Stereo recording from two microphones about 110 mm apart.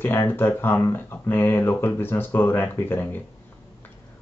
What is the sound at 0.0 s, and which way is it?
Speech, 20° left (ahead or behind).